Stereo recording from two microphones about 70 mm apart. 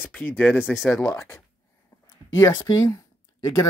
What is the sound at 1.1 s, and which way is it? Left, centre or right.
Speech, left.